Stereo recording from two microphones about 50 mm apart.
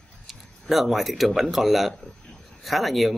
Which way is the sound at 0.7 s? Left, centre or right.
Centre.